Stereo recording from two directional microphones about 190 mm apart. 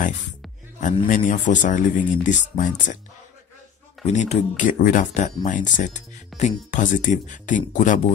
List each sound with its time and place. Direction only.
1.0 s speech: 45° left (ahead or behind)
4.0 s speech: 35° left (ahead or behind)